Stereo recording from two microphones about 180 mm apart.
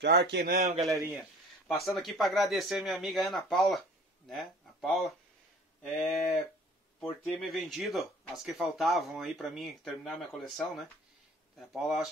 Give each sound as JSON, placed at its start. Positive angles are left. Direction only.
{"t": 0.0, "sound": "speech", "side_deg": -70}
{"t": 0.6, "sound": "a man's voice", "side_deg": -35}
{"t": 1.9, "sound": "speech", "side_deg": 0}